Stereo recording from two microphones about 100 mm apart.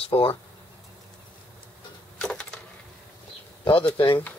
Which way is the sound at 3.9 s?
60° left (ahead or behind).